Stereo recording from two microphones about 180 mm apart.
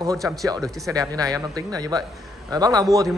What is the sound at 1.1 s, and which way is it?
A man's voice, 20° right (ahead or behind).